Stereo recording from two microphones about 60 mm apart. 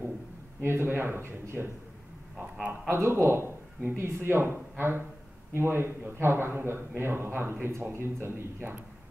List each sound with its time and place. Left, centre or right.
0.6 s a man's voice: right
2.9 s a man's voice: right